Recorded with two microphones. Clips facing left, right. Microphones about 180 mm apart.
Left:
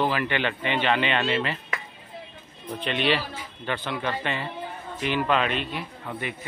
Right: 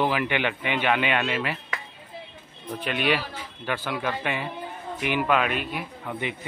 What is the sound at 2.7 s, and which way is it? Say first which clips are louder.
A man's voice: even; 5° right (ahead or behind).